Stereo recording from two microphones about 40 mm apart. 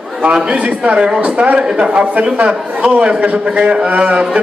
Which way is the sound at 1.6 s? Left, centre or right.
Right.